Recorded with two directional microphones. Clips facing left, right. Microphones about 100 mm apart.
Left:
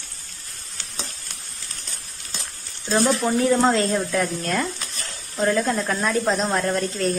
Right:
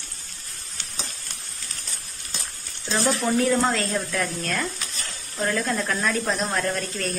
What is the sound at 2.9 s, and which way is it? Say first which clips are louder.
Speech: left 4 dB; 10° left (ahead or behind).